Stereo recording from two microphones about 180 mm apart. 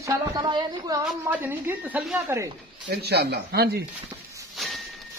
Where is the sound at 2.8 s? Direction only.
65° right (ahead or behind).